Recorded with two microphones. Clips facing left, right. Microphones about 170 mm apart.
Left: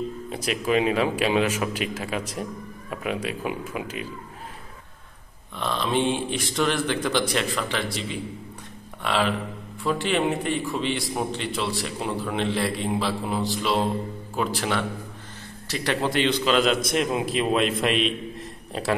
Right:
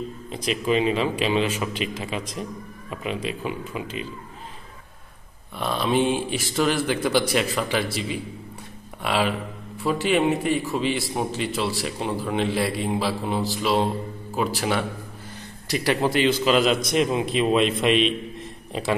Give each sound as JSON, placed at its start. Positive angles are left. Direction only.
{"t": 0.3, "sound": "a man's voice", "side_deg": 10}
{"t": 5.6, "sound": "a man's voice", "side_deg": -10}